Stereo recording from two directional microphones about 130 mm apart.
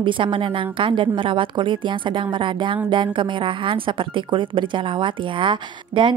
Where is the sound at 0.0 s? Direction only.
40° right (ahead or behind).